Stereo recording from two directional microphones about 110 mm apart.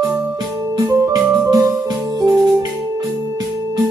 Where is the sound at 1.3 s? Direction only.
35° right (ahead or behind).